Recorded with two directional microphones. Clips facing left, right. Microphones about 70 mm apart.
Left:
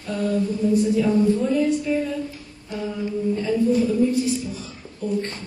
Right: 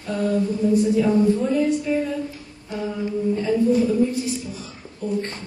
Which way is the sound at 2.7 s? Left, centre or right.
Right.